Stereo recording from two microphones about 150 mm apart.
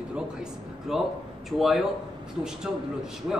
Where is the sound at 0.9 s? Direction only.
5° right (ahead or behind).